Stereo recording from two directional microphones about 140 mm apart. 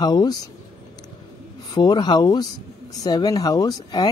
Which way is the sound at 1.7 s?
30° left (ahead or behind).